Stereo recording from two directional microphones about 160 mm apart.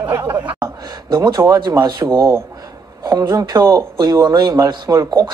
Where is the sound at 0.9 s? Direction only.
25° right (ahead or behind).